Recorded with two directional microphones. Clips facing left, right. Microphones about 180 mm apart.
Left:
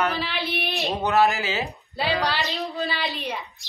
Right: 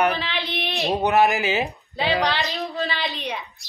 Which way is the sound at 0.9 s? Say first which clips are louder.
Right 2 dB; 15° right (ahead or behind).